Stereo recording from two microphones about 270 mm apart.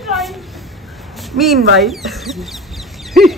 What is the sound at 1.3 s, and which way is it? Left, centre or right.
Speech, right.